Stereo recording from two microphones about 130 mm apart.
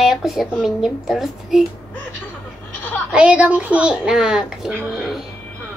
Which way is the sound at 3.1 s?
10° right (ahead or behind).